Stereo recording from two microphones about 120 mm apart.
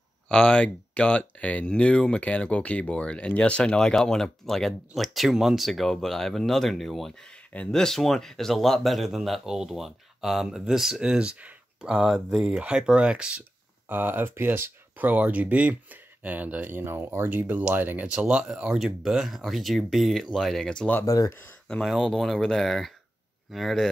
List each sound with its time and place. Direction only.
0.3 s speech: 10° left (ahead or behind)
21.0 s speech: 30° left (ahead or behind)
21.6 s speech: 5° left (ahead or behind)